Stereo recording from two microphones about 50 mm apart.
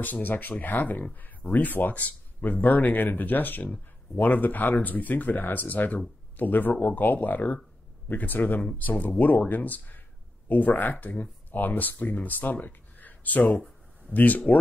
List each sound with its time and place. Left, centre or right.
0.0 s speech: left